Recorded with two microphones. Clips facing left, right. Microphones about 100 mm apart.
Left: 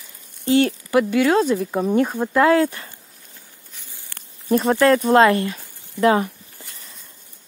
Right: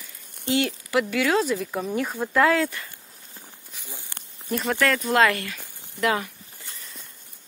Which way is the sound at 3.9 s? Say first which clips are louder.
Right 5 dB; 20° right (ahead or behind).